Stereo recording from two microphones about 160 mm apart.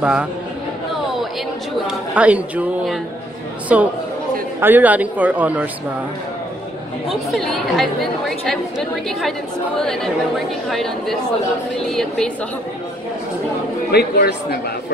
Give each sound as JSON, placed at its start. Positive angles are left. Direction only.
{"t": 0.0, "sound": "speech", "side_deg": -5}
{"t": 2.1, "sound": "speech", "side_deg": -10}
{"t": 7.1, "sound": "a woman's voice", "side_deg": 0}
{"t": 13.9, "sound": "speech", "side_deg": 90}